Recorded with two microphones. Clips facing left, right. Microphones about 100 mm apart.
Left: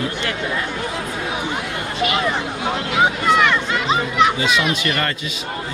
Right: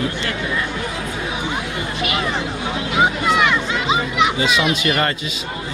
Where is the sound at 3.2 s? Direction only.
5° right (ahead or behind).